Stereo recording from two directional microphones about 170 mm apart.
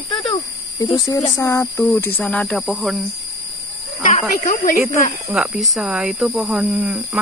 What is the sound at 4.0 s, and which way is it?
Speech, 50° left (ahead or behind).